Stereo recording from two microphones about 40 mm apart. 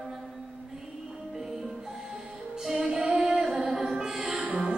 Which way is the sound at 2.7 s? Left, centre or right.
Centre.